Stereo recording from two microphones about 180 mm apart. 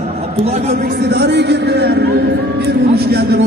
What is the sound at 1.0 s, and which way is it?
A man's voice, 70° right (ahead or behind).